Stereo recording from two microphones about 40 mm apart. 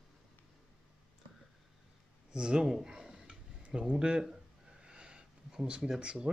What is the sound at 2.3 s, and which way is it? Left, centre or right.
Speech, right.